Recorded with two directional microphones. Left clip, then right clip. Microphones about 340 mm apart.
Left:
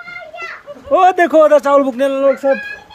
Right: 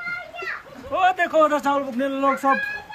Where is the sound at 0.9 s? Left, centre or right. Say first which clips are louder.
Left 9 dB; centre.